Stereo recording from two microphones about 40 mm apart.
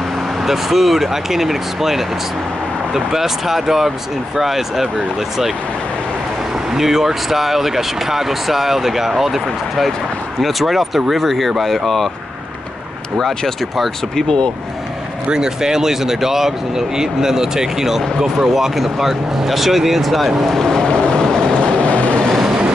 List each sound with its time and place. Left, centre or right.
0.4 s speech: centre
6.7 s speech: centre
14.1 s speech: centre
15.3 s speech: centre
20.4 s speech: centre
21.2 s vehicle: centre
21.8 s vehicle: left